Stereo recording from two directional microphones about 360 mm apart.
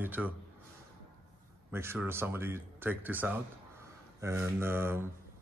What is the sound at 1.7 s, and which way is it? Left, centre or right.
A man's voice, centre.